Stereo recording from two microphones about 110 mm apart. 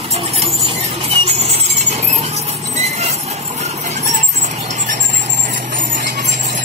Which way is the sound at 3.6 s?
90° right.